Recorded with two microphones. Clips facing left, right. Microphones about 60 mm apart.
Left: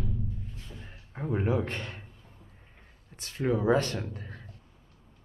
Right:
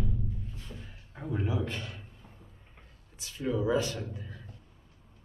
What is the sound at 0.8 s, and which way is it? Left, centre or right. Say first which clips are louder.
Speech: left 6 dB; left.